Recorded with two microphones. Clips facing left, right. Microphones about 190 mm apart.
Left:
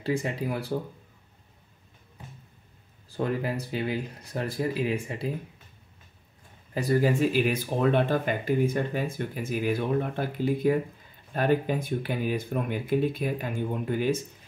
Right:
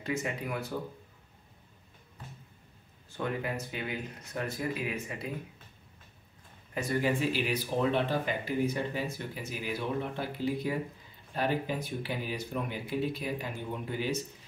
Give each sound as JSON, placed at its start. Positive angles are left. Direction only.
{"t": 0.0, "sound": "speech", "side_deg": 30}
{"t": 3.1, "sound": "speech", "side_deg": 35}
{"t": 6.7, "sound": "speech", "side_deg": 35}